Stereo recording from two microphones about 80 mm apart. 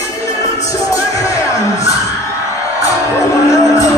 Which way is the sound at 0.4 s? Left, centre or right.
Left.